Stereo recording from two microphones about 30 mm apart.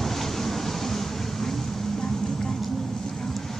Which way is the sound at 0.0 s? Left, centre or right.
Centre.